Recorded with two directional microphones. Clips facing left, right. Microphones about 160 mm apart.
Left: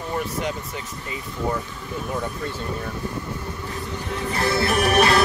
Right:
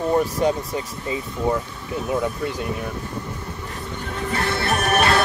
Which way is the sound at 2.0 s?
15° right (ahead or behind).